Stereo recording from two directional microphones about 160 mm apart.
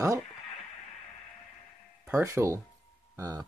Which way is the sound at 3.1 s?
25° right (ahead or behind).